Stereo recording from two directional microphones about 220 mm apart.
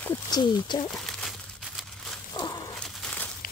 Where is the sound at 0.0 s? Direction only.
20° left (ahead or behind).